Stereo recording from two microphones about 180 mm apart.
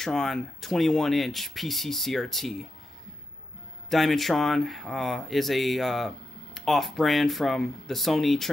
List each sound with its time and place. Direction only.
0.0 s speech: centre (ahead or behind)
3.9 s speech: centre (ahead or behind)